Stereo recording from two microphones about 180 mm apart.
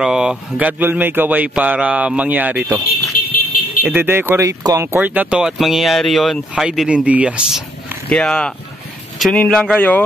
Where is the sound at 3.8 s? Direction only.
10° right (ahead or behind).